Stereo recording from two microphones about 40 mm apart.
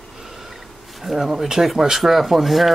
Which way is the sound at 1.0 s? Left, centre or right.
Centre.